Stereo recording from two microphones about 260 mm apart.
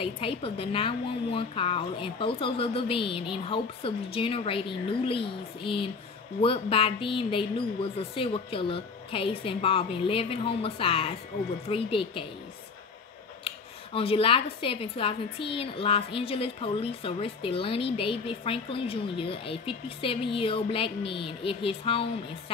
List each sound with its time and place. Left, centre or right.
0.0 s a woman's voice: left
13.9 s a woman's voice: left